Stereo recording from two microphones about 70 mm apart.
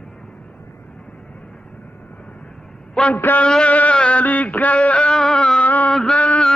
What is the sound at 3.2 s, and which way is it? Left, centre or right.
Speech, left.